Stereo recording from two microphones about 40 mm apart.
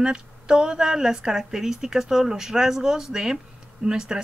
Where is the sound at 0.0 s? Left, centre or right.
Centre.